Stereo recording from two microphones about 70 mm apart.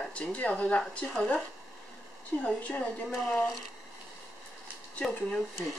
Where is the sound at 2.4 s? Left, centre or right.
Centre.